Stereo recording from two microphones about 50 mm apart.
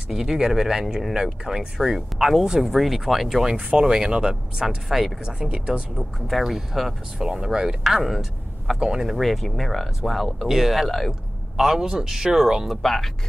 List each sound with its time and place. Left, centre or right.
0.1 s speech: centre
5.2 s speech: centre
5.9 s speech: centre
8.7 s speech: centre
10.9 s speech: centre
11.5 s speech: centre
12.6 s speech: centre